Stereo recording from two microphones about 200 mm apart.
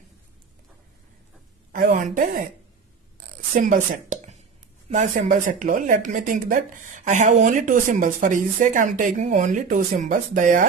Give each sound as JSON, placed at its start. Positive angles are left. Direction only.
{"t": 1.7, "sound": "a sound", "side_deg": -45}
{"t": 2.1, "sound": "speech", "side_deg": -40}
{"t": 3.5, "sound": "speech", "side_deg": -40}